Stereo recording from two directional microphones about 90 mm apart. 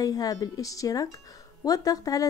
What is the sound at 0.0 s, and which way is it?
A woman's voice, 45° left (ahead or behind).